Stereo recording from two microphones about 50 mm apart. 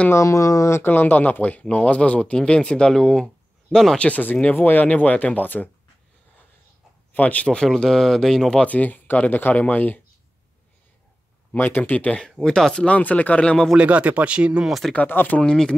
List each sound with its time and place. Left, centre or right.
0.1 s speech: left
0.8 s speech: left; by 4.0 s centre
4.0 s speech: left
4.8 s speech: left
7.2 s speech: left
7.4 s speech: centre
8.5 s speech: left
11.5 s speech: left
12.2 s speech: centre
12.8 s speech: left
13.7 s speech: right
15.0 s speech: left
15.4 s speech: centre